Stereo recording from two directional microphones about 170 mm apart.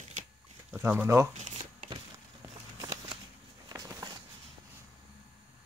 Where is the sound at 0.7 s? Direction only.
15° right (ahead or behind).